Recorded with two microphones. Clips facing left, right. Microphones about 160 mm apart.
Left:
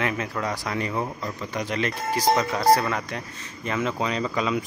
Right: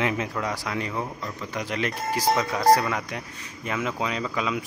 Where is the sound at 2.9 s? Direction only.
10° right (ahead or behind).